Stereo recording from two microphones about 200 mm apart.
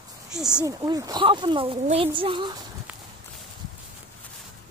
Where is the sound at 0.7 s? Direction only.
20° right (ahead or behind).